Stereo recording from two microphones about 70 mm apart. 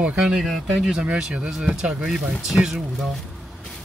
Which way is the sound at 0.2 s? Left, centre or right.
Centre.